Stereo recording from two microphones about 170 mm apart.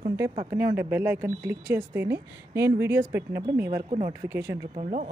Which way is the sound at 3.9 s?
35° right (ahead or behind).